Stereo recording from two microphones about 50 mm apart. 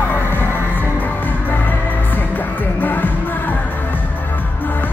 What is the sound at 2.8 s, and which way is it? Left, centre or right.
Music, left.